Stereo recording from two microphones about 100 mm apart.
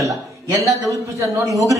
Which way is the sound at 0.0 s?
35° right (ahead or behind).